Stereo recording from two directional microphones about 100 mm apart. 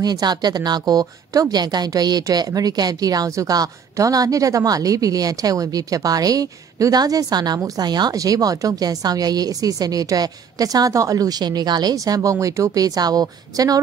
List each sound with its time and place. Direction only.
0.0 s a woman's voice: 45° right (ahead or behind)